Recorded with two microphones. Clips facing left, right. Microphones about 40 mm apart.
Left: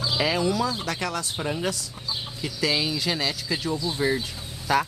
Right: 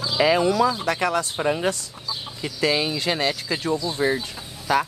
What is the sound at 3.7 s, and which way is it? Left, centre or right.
Speech, centre.